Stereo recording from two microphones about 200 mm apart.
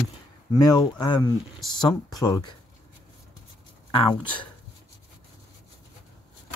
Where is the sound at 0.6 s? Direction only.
20° left (ahead or behind).